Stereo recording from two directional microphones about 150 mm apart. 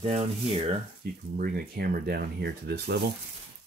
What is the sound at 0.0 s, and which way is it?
Speech, 45° right (ahead or behind).